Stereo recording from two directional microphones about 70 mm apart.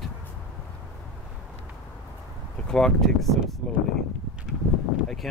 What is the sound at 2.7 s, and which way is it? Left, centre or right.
Speech, centre.